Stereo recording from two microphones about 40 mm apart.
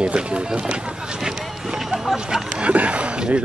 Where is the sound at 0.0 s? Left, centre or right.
Right.